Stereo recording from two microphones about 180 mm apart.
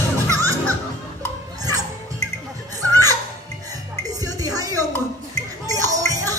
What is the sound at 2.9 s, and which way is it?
Music, 20° right (ahead or behind).